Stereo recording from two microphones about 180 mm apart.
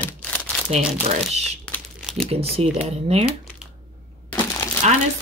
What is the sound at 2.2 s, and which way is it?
Speech, 35° right (ahead or behind).